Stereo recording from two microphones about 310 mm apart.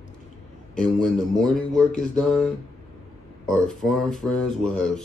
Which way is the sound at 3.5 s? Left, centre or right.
Centre.